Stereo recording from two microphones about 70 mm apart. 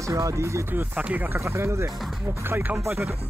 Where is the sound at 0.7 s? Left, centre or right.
Right.